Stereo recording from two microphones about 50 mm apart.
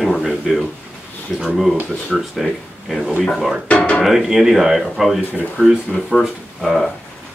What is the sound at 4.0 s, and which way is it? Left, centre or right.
Speech, centre.